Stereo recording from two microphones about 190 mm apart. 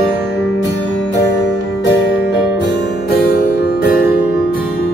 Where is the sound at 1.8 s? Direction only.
70° left (ahead or behind).